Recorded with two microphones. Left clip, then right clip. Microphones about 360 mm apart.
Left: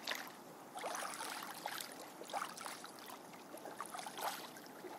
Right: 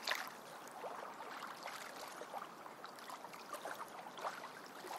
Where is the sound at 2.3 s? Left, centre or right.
Left.